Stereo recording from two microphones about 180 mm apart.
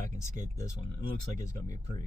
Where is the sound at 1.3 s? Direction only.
15° left (ahead or behind).